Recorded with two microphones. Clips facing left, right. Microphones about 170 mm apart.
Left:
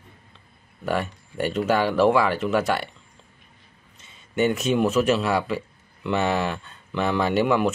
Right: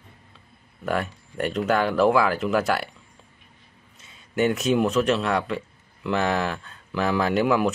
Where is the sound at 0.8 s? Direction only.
Centre (ahead or behind).